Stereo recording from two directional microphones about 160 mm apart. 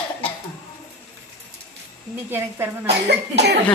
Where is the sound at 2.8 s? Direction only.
90° right.